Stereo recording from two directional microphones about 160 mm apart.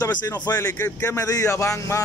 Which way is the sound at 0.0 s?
25° left (ahead or behind).